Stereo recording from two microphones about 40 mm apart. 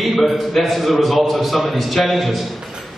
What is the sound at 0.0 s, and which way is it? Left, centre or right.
A man's voice, centre.